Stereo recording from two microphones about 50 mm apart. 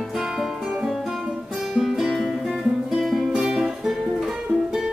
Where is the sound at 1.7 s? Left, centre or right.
Centre.